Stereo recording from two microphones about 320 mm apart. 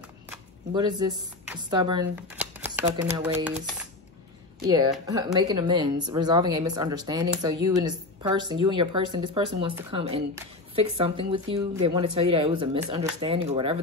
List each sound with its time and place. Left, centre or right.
0.3 s a woman's voice: centre